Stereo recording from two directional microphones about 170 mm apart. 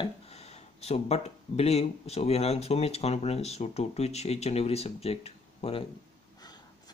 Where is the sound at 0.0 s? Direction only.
40° left (ahead or behind).